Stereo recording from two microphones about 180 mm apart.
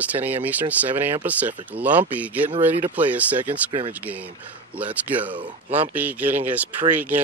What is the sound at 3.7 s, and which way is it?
Speech, 30° right (ahead or behind).